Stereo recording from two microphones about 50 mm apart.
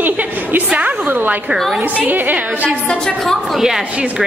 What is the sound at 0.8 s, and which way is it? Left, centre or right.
A woman's voice, right.